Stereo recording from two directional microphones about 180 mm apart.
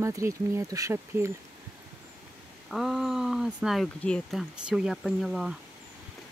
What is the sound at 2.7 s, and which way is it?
Speech, centre (ahead or behind).